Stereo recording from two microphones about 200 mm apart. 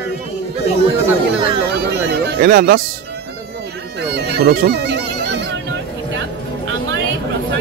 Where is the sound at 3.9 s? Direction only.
55° right (ahead or behind).